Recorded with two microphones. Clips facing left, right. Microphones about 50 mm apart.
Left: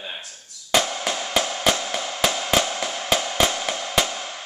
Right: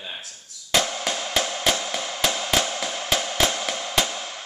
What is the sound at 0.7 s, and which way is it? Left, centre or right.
Music, centre.